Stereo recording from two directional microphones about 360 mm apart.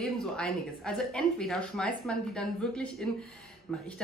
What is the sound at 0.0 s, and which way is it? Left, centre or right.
A woman's voice, centre.